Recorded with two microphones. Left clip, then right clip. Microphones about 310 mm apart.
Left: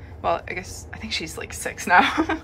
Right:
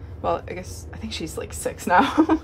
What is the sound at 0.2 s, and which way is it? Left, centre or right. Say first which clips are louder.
Speech: left 1 dB; centre.